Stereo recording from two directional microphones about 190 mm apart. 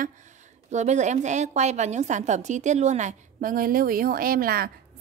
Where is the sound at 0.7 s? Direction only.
40° right (ahead or behind).